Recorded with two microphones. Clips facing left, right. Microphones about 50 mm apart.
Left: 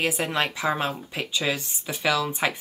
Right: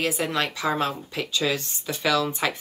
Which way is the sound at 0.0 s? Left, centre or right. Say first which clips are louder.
Even; left.